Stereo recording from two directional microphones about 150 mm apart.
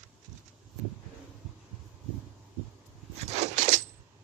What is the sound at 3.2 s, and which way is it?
Coin, 50° right (ahead or behind).